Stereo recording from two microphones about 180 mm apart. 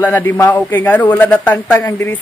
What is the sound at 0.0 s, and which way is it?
A man's voice, 10° left (ahead or behind).